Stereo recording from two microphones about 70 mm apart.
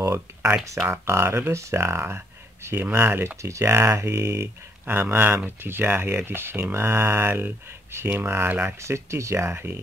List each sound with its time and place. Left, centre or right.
1.0 s speech: right
3.4 s speech: right
8.7 s speech: right